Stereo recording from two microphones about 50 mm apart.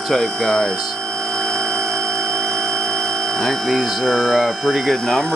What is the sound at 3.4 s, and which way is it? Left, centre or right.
Speech, centre.